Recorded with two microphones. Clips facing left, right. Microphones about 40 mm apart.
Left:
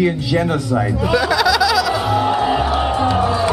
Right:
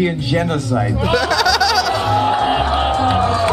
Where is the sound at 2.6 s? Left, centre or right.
Centre.